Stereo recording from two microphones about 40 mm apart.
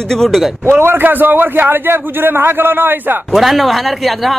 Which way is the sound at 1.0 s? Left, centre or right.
Right.